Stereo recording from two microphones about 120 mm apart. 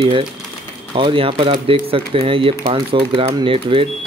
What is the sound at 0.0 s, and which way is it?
Speech, 45° right (ahead or behind).